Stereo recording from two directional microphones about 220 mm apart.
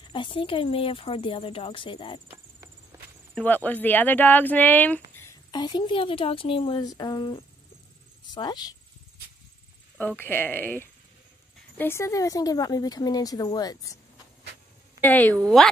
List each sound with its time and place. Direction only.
0.0 s a woman's voice: 20° left (ahead or behind)
3.3 s a woman's voice: 10° left (ahead or behind)
9.9 s a woman's voice: 10° left (ahead or behind)
15.0 s speech: 10° left (ahead or behind)